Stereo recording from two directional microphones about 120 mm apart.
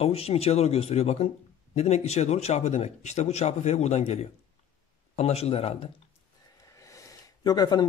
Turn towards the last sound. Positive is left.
turn(degrees=35)  # may be behind; listen again after turning